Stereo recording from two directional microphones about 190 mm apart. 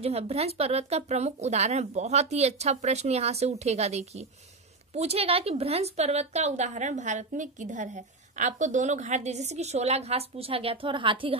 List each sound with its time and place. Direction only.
0.0 s a woman's voice: 30° right (ahead or behind)